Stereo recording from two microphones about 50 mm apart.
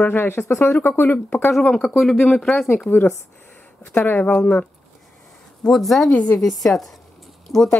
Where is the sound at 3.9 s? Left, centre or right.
Left.